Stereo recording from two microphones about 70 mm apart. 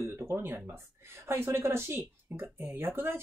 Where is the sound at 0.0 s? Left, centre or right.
Right.